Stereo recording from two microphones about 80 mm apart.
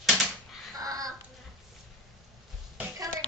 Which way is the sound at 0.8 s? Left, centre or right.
Right.